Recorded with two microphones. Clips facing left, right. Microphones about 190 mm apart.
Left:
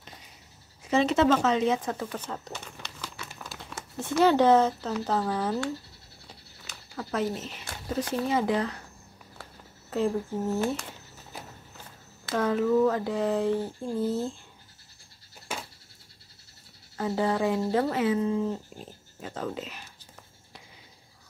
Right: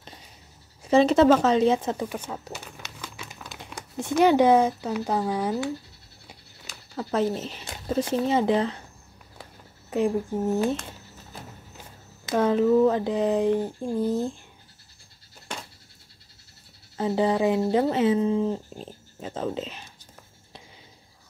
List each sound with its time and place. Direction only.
0.8 s speech: 35° right (ahead or behind); by 5.7 s 15° right (ahead or behind)
7.0 s speech: 30° right (ahead or behind)
9.4 s a sound: 15° right (ahead or behind)
12.3 s speech: 25° right (ahead or behind)
15.5 s a sound: 5° left (ahead or behind)
16.9 s speech: 20° right (ahead or behind)